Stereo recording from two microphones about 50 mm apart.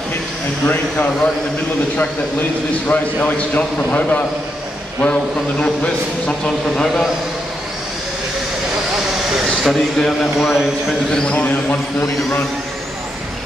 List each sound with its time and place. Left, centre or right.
0.7 s speech: left
2.9 s a man's voice: left
9.3 s speech: centre
10.5 s speech: centre
11.1 s a man's voice: centre